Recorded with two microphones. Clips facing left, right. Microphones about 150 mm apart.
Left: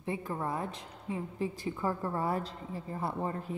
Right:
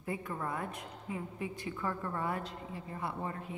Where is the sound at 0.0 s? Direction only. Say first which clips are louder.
Left 3 dB; 30° left (ahead or behind).